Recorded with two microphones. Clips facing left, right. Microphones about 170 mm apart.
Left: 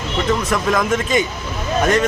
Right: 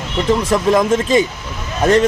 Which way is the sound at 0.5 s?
30° right (ahead or behind).